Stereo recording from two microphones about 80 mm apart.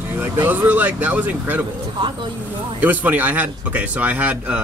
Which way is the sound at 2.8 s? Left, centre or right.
Right.